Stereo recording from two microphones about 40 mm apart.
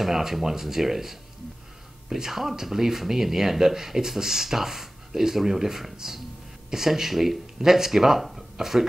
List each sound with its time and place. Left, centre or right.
0.0 s speech: centre